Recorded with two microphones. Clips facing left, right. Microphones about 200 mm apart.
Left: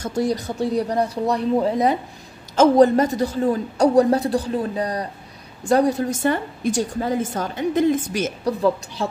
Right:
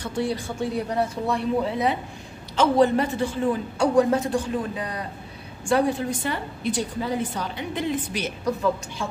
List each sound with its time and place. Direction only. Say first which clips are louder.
0.0 s a man's voice: left 4 dB; 40° left (ahead or behind)